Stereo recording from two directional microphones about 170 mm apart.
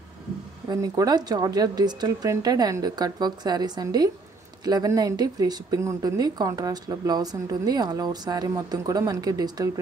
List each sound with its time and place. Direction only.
0.7 s speech: 20° right (ahead or behind)